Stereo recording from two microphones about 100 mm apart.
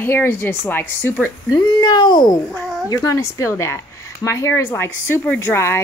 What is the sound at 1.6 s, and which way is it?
Speech, 50° left (ahead or behind).